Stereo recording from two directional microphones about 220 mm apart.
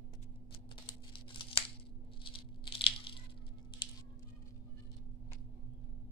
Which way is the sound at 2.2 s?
25° left (ahead or behind).